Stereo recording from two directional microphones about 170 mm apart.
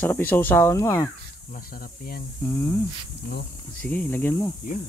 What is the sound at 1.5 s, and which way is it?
Speech, 60° left (ahead or behind).